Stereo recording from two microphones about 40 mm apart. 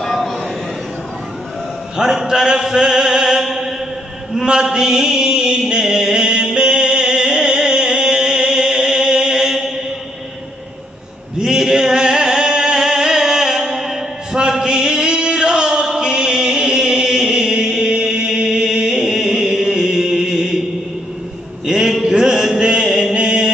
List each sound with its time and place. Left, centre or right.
0.0 s a sound: centre
2.0 s a sound: centre
4.6 s mantra: centre
5.7 s music: centre
11.4 s music: centre
14.6 s chant: centre
21.6 s a sound: centre
22.6 s mantra: centre
23.1 s chant: right